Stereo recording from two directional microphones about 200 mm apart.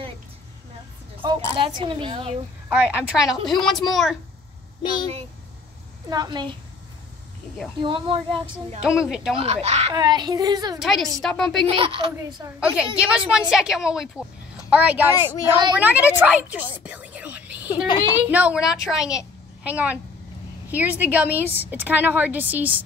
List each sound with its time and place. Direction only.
1.2 s a woman's voice: 20° right (ahead or behind)
2.7 s a woman's voice: 5° right (ahead or behind)
6.0 s a woman's voice: 20° right (ahead or behind)
7.8 s a woman's voice: 25° right (ahead or behind)
8.8 s a woman's voice: 5° right (ahead or behind)
9.4 s speech: 30° right (ahead or behind)
9.9 s a woman's voice: 20° right (ahead or behind)
10.8 s a woman's voice: centre (ahead or behind)
11.6 s a woman's voice: 25° right (ahead or behind)
12.5 s a woman's voice: 5° right (ahead or behind)
16.7 s whispering: 5° right (ahead or behind)
17.8 s a woman's voice: 20° left (ahead or behind)
18.3 s a woman's voice: 5° right (ahead or behind)